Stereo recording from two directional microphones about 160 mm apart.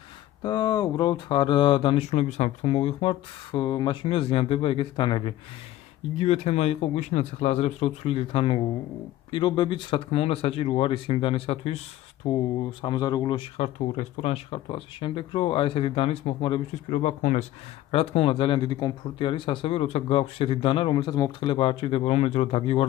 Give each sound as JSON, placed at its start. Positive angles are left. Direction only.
{"t": 0.4, "sound": "speech", "side_deg": 25}
{"t": 13.7, "sound": "speech", "side_deg": 45}
{"t": 16.9, "sound": "speech", "side_deg": 45}
{"t": 17.9, "sound": "speech", "side_deg": 35}